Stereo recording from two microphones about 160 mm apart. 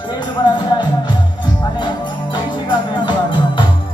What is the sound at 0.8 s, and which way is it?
Music, 30° left (ahead or behind).